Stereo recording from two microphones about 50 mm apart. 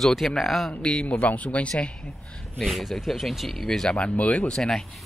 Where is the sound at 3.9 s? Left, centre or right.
Left.